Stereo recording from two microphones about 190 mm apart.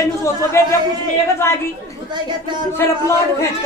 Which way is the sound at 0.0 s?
15° left (ahead or behind).